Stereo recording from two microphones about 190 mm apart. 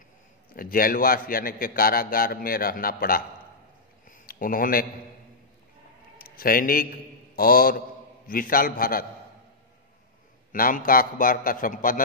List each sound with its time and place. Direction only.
0.6 s a man's voice: 50° left (ahead or behind)
4.1 s a sound: 45° left (ahead or behind)
6.3 s a man's voice: 50° left (ahead or behind)
10.5 s a man's voice: 45° left (ahead or behind)